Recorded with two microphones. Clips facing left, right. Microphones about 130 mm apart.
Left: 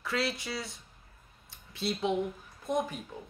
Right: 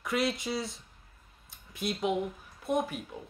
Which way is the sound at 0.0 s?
20° right (ahead or behind).